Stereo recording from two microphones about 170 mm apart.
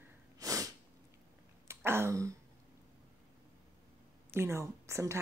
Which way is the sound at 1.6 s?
15° right (ahead or behind).